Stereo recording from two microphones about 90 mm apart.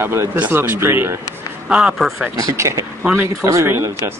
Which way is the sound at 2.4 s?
35° right (ahead or behind).